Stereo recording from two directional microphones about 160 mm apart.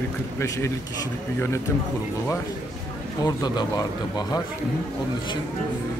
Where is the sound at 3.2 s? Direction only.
25° left (ahead or behind).